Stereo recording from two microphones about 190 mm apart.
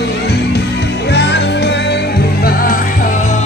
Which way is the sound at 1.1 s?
65° left (ahead or behind).